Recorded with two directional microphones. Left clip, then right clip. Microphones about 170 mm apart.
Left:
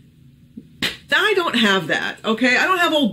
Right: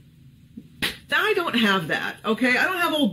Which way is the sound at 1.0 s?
15° left (ahead or behind).